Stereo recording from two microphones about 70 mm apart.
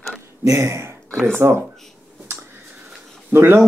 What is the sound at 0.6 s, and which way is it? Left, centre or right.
Speech, right.